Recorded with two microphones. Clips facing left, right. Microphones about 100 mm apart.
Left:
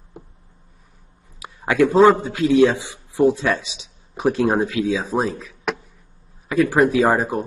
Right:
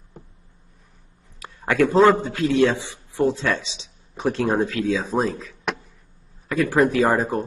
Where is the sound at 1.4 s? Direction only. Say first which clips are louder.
Left 2 dB; 15° left (ahead or behind).